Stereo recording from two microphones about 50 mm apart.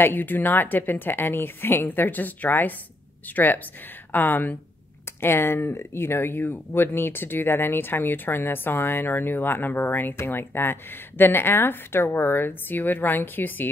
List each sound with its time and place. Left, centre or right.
0.0 s a woman's voice: left
5.2 s speech: left